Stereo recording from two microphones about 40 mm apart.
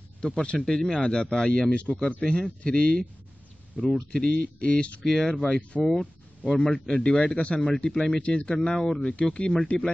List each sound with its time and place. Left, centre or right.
0.2 s speech: left
3.7 s speech: centre
4.1 s speech: left
5.0 s speech: centre; by 5.9 s left
6.5 s speech: centre
8.2 s speech: left
8.5 s speech: centre